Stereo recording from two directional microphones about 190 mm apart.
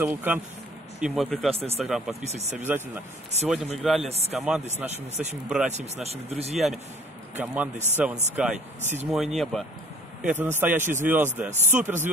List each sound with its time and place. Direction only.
0.0 s speech: 10° right (ahead or behind)
1.5 s speech: 30° right (ahead or behind)
1.8 s speech: centre (ahead or behind)
4.0 s speech: 35° right (ahead or behind)
4.4 s speech: 5° right (ahead or behind)
4.8 s speech: 35° right (ahead or behind)
6.5 s speech: centre (ahead or behind)
10.2 s speech: 10° right (ahead or behind)